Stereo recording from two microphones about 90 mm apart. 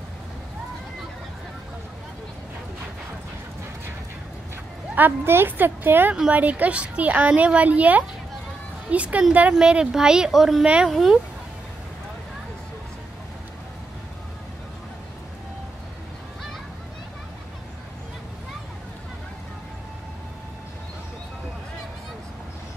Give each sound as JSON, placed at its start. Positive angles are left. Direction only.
{"t": 4.9, "sound": "a woman's voice", "side_deg": -20}